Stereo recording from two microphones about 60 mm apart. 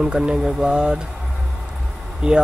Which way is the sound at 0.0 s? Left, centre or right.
Centre.